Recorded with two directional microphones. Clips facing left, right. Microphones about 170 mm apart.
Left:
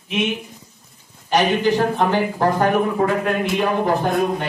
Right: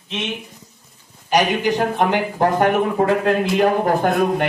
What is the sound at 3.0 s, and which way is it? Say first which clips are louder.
A man's voice: right 2 dB; 35° right (ahead or behind).